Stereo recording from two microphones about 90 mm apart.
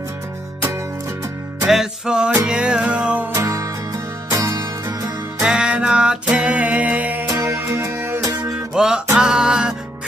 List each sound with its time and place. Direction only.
1.7 s music: 5° right (ahead or behind)
3.3 s music: 35° right (ahead or behind)
5.4 s music: 10° right (ahead or behind)
7.2 s music: 35° right (ahead or behind)
8.2 s music: 50° right (ahead or behind)
8.7 s music: 10° right (ahead or behind)